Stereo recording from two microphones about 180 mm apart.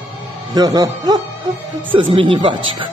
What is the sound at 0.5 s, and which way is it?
A man's voice, 20° right (ahead or behind).